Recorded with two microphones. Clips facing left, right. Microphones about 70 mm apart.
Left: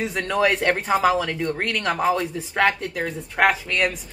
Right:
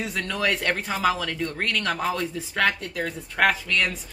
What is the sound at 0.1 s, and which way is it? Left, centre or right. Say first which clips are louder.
Speech: left 6 dB; left.